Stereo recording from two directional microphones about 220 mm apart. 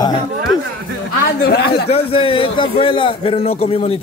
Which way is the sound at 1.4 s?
45° left (ahead or behind).